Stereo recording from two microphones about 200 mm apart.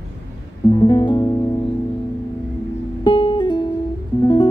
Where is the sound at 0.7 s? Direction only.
20° left (ahead or behind).